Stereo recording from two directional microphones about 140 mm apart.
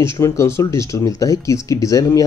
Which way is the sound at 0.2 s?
20° left (ahead or behind).